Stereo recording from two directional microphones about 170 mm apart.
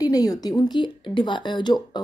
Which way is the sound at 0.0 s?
20° left (ahead or behind).